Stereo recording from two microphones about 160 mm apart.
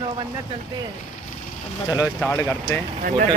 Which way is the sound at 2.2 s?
10° left (ahead or behind).